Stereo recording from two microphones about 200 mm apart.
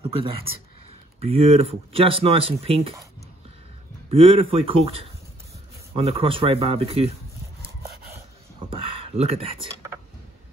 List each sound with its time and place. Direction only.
0.0 s speech: 25° right (ahead or behind)
4.1 s speech: 30° right (ahead or behind)
8.6 s a sound: 30° right (ahead or behind)